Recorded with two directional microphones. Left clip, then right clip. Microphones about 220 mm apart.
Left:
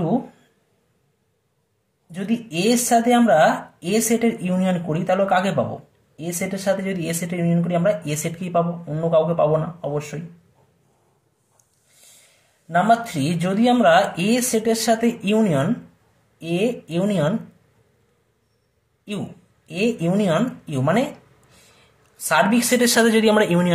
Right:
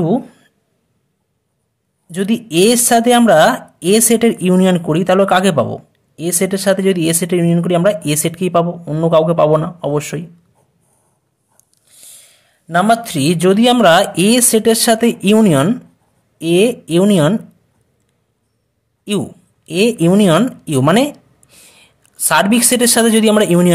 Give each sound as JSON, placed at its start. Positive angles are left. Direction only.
{"t": 2.0, "sound": "speech", "side_deg": -45}
{"t": 12.6, "sound": "speech", "side_deg": -50}
{"t": 19.0, "sound": "speech", "side_deg": -45}